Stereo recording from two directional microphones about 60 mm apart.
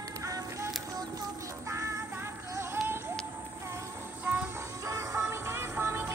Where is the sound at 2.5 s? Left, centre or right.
Right.